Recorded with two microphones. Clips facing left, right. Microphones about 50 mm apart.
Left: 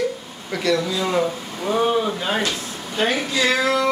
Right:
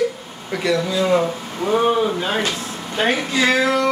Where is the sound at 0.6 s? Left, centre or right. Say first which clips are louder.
Right 2 dB; centre.